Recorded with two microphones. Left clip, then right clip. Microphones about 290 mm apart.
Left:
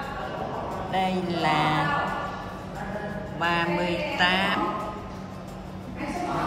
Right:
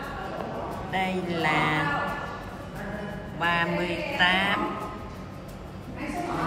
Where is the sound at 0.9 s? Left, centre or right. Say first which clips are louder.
Left 2 dB; centre.